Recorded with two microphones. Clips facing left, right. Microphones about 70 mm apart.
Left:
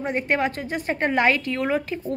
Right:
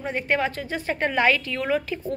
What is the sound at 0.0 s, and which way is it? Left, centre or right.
A woman's voice, left.